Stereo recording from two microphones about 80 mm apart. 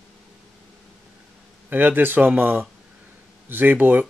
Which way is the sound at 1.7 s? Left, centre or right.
Right.